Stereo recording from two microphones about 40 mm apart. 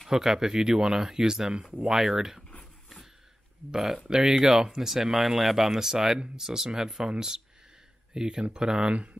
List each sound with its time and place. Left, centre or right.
0.1 s speech: centre
3.7 s speech: centre
8.9 s speech: right